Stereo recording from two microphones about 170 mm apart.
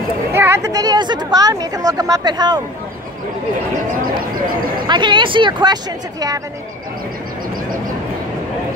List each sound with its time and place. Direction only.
0.3 s speech: 15° right (ahead or behind)
4.8 s speech: 25° right (ahead or behind)